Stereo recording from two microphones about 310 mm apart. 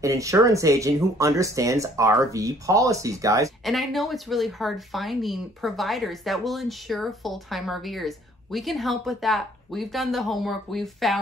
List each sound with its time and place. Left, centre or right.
0.0 s speech: centre
3.6 s speech: centre